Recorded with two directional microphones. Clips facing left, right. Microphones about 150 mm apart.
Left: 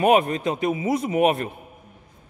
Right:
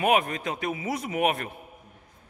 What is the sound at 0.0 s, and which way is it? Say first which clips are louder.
A man's voice: left 6 dB; 30° left (ahead or behind).